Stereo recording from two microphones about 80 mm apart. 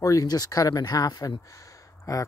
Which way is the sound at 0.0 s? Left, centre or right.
Left.